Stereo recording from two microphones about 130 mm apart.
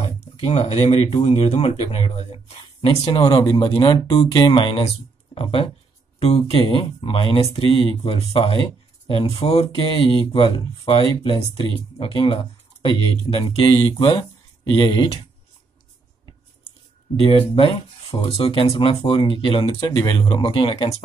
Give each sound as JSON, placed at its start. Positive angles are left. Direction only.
{"t": 0.4, "sound": "speech", "side_deg": 55}
{"t": 8.6, "sound": "a sound", "side_deg": 40}
{"t": 9.4, "sound": "speech", "side_deg": 50}
{"t": 17.2, "sound": "speech", "side_deg": 45}